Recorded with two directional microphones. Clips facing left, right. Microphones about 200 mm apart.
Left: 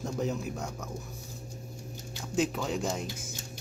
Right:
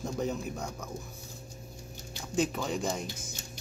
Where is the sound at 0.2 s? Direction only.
5° left (ahead or behind).